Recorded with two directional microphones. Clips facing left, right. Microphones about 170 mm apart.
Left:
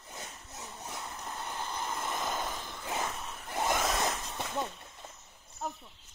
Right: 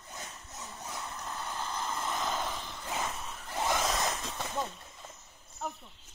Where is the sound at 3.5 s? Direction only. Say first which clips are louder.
Left 1 dB; 15° left (ahead or behind).